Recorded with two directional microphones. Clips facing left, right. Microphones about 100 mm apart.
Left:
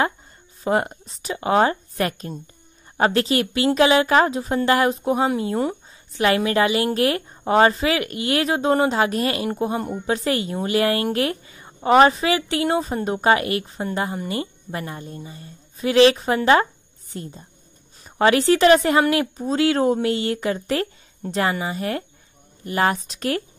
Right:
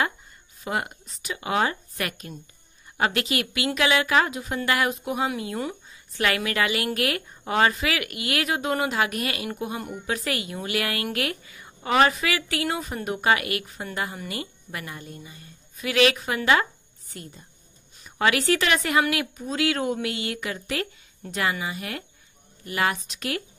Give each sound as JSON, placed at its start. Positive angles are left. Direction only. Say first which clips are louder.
{"t": 0.7, "sound": "a woman's voice", "louder": "left 8 dB", "side_deg": 35}